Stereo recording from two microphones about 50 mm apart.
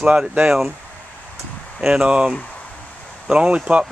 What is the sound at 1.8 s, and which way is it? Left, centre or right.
Speech, centre.